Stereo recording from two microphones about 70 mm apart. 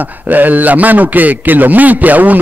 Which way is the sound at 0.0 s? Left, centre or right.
Right.